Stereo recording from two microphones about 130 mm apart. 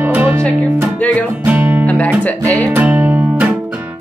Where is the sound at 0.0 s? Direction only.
15° right (ahead or behind).